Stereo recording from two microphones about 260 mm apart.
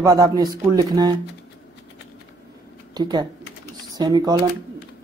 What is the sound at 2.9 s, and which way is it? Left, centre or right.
Speech, centre.